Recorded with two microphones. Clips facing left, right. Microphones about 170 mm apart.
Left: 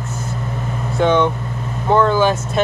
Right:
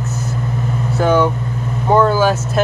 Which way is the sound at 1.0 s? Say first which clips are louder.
Even; 5° right (ahead or behind).